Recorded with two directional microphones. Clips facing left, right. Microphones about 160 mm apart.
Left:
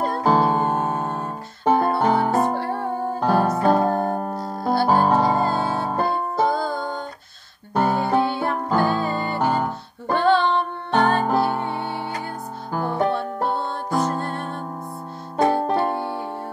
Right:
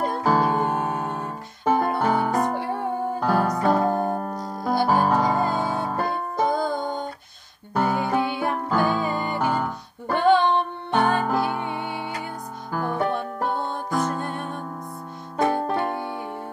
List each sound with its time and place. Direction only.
0.2 s music: 25° left (ahead or behind)
1.0 s music: 40° left (ahead or behind)
6.5 s music: 20° right (ahead or behind)
7.7 s music: 35° left (ahead or behind)
10.1 s female singing: 15° right (ahead or behind)
11.1 s music: 35° left (ahead or behind)
12.7 s music: 30° left (ahead or behind)
15.3 s music: 30° left (ahead or behind)